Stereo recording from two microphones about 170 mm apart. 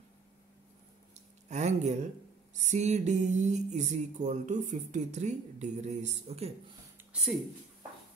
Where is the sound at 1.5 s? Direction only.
40° right (ahead or behind).